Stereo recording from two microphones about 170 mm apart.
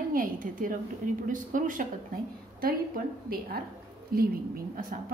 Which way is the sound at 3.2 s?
60° right (ahead or behind).